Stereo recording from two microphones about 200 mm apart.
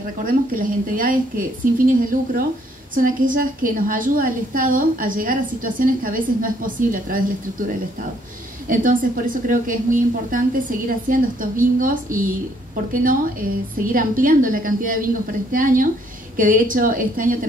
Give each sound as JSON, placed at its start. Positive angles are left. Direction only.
{"t": 0.2, "sound": "a woman's voice", "side_deg": -45}
{"t": 8.6, "sound": "a woman's voice", "side_deg": -45}